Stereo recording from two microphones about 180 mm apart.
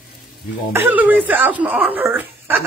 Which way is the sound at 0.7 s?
10° right (ahead or behind).